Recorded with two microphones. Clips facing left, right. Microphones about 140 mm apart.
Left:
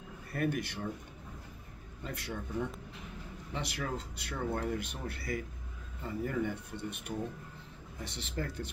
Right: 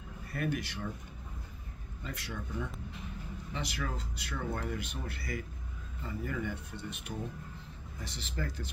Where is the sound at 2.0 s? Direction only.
55° left (ahead or behind).